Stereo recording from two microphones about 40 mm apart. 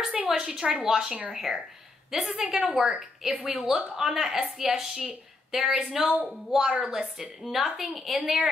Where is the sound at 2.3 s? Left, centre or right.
Right; by 8.4 s centre.